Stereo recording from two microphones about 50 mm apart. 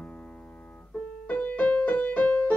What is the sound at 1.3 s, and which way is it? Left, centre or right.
Music, left.